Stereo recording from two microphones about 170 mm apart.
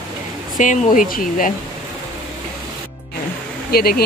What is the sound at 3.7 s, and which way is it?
Speech, 60° left (ahead or behind).